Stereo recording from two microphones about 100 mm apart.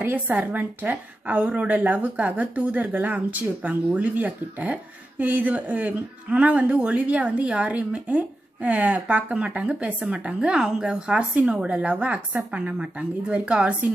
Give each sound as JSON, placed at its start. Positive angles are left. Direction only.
{"t": 0.0, "sound": "a woman's voice", "side_deg": -15}